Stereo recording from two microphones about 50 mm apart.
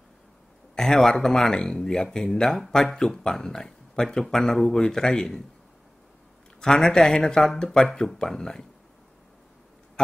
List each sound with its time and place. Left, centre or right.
0.7 s speech: centre
6.6 s speech: centre
10.0 s speech: centre